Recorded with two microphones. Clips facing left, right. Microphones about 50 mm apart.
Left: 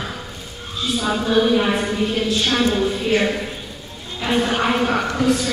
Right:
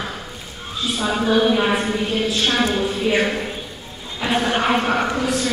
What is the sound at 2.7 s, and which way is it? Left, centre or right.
Speech, centre.